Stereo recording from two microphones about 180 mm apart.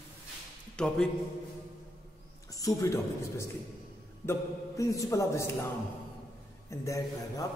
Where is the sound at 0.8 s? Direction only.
5° left (ahead or behind).